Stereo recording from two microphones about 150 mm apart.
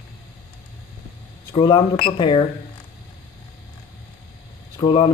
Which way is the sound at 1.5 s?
30° left (ahead or behind).